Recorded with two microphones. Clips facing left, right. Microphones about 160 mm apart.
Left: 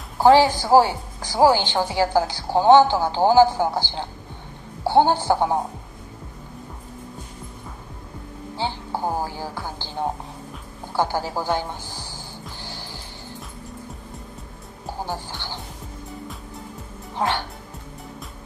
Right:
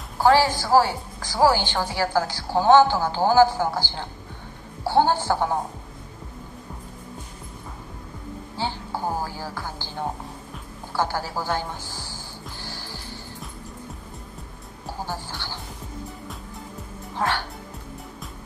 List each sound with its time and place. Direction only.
0.2 s a woman's voice: 20° left (ahead or behind)
8.5 s speech: 15° left (ahead or behind)
10.9 s a woman's voice: 15° left (ahead or behind)
12.6 s music: 15° left (ahead or behind)
14.9 s speech: 15° left (ahead or behind)
17.2 s a woman's voice: 15° left (ahead or behind)